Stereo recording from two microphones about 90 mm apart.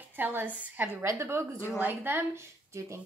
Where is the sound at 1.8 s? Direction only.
25° right (ahead or behind).